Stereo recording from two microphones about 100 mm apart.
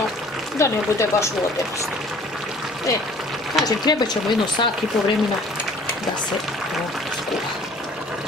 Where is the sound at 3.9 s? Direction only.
40° left (ahead or behind).